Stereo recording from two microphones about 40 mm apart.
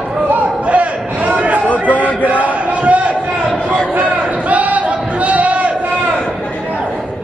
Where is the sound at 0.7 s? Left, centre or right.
Right.